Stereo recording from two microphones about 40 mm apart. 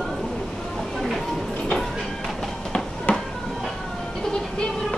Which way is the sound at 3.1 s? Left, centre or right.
Left.